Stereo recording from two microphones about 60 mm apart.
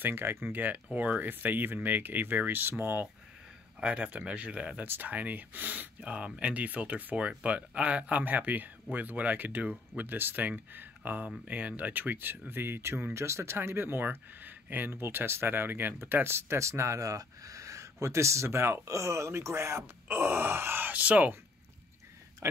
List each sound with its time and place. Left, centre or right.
0.0 s speech: right
3.8 s speech: right
4.8 s speech: right
22.4 s speech: right